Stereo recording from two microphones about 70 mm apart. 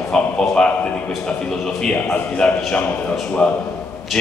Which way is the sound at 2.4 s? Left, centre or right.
Centre.